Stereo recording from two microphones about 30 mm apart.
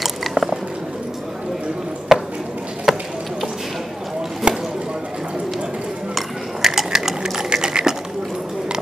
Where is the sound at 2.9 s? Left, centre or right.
Centre.